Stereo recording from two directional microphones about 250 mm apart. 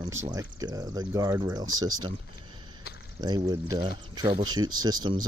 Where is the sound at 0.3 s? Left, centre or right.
Centre.